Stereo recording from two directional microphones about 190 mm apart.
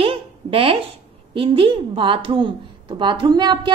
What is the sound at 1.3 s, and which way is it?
A woman's voice, 25° right (ahead or behind).